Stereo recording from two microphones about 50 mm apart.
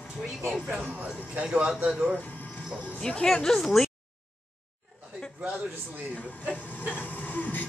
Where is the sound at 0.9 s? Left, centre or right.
Right.